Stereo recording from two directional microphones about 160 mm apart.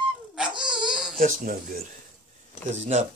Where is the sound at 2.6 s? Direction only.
45° right (ahead or behind).